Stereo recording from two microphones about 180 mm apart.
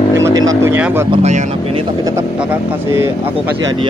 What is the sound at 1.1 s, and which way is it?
Speech, 40° right (ahead or behind).